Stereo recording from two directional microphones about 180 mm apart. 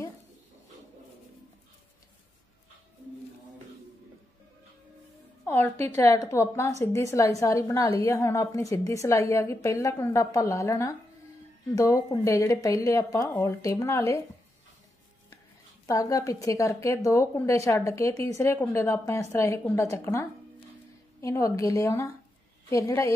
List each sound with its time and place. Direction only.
5.4 s a woman's voice: 10° left (ahead or behind)
15.9 s a woman's voice: 20° left (ahead or behind)